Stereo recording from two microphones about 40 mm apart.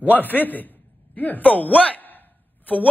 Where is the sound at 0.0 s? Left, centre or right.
Left.